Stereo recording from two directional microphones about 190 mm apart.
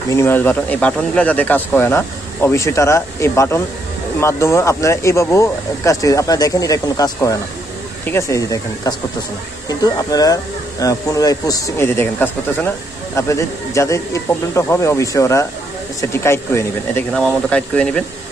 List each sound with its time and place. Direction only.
0.1 s speech: 10° left (ahead or behind)